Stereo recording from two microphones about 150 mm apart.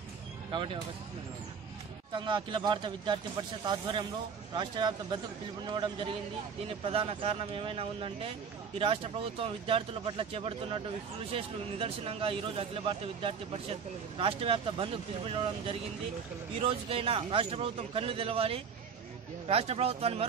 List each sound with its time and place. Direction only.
2.1 s speech: 35° right (ahead or behind)